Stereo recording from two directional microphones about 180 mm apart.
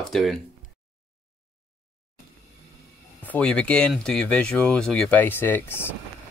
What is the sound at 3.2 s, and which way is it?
Speech, 5° left (ahead or behind).